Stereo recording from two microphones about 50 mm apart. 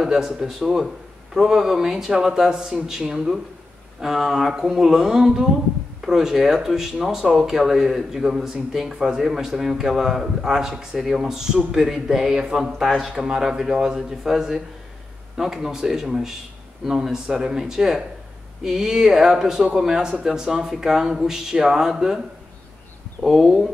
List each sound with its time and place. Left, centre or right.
0.0 s speech: centre
23.2 s speech: centre